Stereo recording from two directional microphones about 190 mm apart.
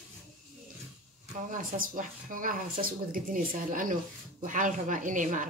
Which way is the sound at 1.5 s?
45° right (ahead or behind).